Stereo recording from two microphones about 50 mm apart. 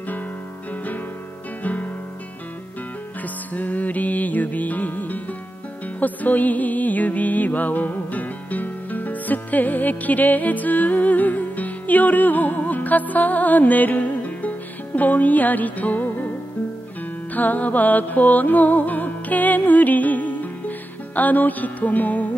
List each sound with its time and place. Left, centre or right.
1.6 s music: left
3.5 s music: left
17.3 s music: left